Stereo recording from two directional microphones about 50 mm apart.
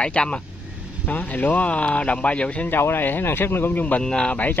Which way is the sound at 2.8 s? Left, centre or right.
Left.